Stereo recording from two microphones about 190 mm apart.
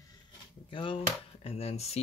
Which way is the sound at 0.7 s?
25° left (ahead or behind).